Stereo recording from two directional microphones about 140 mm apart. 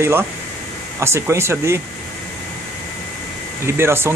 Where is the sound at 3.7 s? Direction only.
20° right (ahead or behind).